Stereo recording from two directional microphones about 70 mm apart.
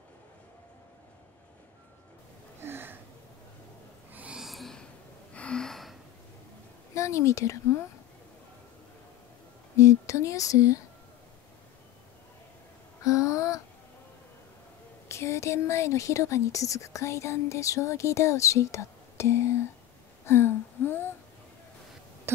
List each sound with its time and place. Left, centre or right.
2.6 s a sound: right
4.1 s owl: right
4.4 s snort: centre
5.3 s gasp: centre
7.0 s speech: left
9.8 s a woman's voice: left
13.0 s a sound: left
15.0 s a woman's voice: left
20.2 s a sound: left